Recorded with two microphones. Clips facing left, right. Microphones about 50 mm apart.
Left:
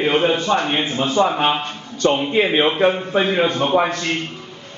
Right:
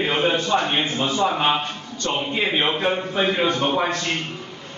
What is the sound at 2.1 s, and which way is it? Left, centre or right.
Speech, left.